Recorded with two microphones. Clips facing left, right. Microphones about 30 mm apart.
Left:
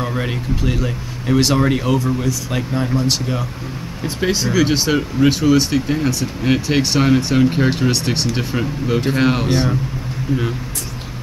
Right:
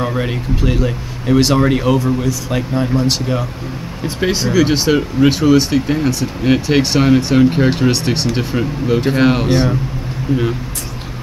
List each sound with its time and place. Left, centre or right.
0.1 s speech: centre
4.5 s speech: centre
8.5 s speech: centre
9.0 s speech: centre